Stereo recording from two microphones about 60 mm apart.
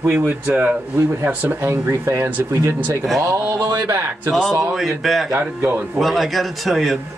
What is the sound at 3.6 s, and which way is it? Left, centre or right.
Speech, right.